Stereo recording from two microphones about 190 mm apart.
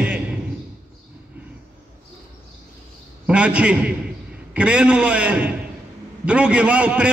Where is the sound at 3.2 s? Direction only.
5° right (ahead or behind).